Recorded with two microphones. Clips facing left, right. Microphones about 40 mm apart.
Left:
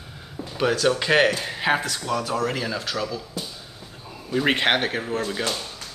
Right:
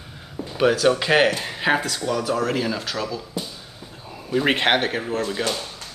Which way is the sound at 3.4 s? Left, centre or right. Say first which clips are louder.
Right 1 dB; centre.